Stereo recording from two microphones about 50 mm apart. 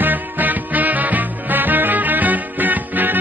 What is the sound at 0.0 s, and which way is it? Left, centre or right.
Music, right.